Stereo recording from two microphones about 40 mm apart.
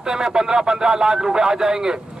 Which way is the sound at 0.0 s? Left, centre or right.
Centre.